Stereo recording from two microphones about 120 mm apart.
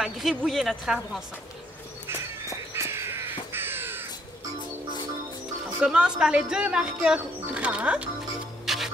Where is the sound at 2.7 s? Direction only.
20° right (ahead or behind).